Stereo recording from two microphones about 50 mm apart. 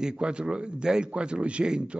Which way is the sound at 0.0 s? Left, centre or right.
Centre.